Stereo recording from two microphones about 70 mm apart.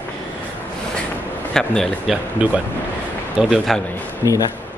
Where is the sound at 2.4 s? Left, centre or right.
Centre.